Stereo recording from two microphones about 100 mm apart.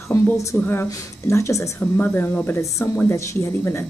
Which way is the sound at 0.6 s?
20° left (ahead or behind).